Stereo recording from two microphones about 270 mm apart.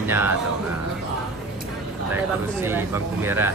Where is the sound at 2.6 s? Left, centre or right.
Centre.